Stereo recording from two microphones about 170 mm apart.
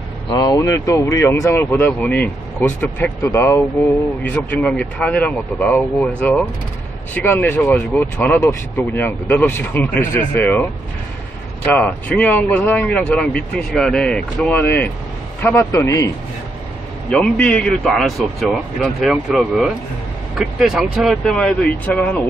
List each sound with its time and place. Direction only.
0.3 s speech: 20° left (ahead or behind)
17.1 s speech: 5° left (ahead or behind)